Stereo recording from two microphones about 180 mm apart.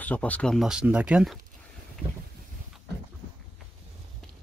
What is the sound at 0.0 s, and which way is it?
Speech, 10° left (ahead or behind).